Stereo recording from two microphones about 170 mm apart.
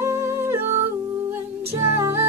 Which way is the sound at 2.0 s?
15° right (ahead or behind).